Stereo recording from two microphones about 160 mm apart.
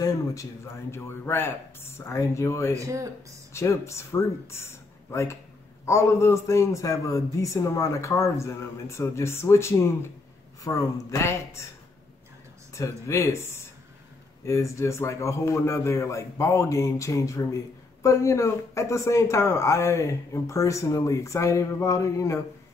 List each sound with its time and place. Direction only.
0.0 s a man's voice: 20° left (ahead or behind)
2.7 s speech: 20° right (ahead or behind)
3.5 s a man's voice: 15° left (ahead or behind)
5.1 s a man's voice: 20° left (ahead or behind)
12.7 s a man's voice: 20° left (ahead or behind)
14.4 s a man's voice: 15° left (ahead or behind)